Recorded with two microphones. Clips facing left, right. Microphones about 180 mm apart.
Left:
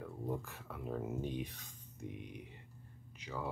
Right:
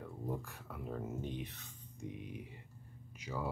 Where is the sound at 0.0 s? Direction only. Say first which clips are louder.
Left 1 dB; centre (ahead or behind).